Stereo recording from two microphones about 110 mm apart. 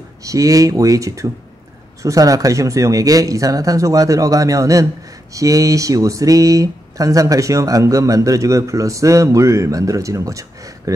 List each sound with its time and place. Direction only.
0.2 s speech: 30° right (ahead or behind)